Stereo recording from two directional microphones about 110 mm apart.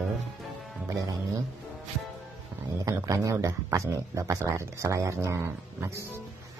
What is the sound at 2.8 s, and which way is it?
Speech, 30° right (ahead or behind).